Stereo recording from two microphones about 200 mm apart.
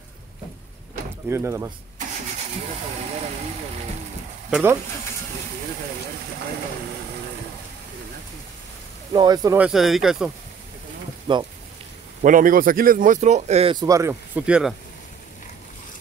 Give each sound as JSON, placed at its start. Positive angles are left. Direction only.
{"t": 1.3, "sound": "speech", "side_deg": -15}
{"t": 4.5, "sound": "speech", "side_deg": -5}
{"t": 9.1, "sound": "speech", "side_deg": -20}
{"t": 9.6, "sound": "speech", "side_deg": 0}
{"t": 11.3, "sound": "speech", "side_deg": -25}
{"t": 12.2, "sound": "speech", "side_deg": -40}